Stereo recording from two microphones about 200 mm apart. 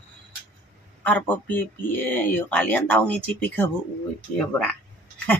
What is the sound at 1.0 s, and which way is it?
Speech, 10° left (ahead or behind).